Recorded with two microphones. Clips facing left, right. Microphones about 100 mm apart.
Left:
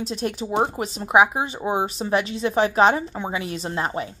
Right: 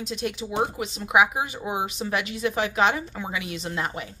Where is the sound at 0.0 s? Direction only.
40° left (ahead or behind).